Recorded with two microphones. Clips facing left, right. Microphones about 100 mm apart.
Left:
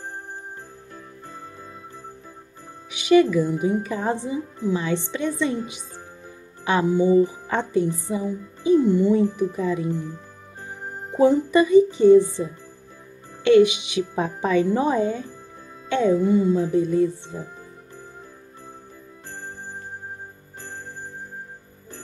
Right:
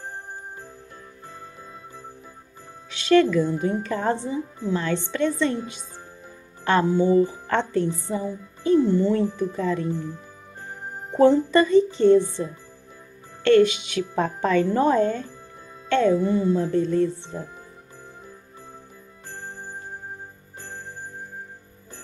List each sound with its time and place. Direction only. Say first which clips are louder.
2.9 s a woman's voice: left 1 dB; 15° left (ahead or behind)